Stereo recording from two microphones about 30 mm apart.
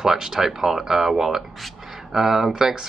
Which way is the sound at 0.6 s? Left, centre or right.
Centre.